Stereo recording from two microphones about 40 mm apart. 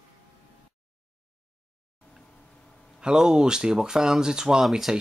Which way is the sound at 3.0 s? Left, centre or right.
Centre.